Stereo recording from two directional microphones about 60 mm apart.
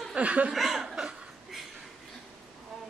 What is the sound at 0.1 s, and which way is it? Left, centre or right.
Speech, centre.